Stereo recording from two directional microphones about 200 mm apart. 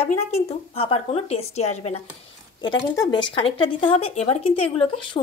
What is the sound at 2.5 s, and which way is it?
Speech, 20° left (ahead or behind).